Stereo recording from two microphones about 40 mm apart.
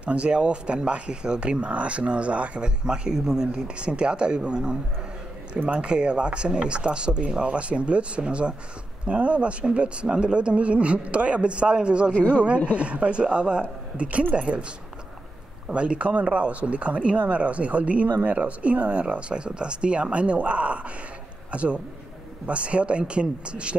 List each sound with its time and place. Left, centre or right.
0.0 s speech: right
15.7 s a man's voice: right